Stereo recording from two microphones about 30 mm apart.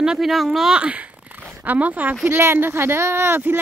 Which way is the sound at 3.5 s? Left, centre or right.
Right.